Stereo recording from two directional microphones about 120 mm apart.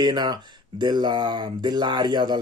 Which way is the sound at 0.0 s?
35° right (ahead or behind).